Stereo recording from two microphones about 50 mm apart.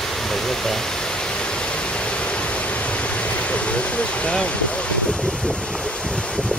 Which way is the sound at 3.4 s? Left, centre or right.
Left.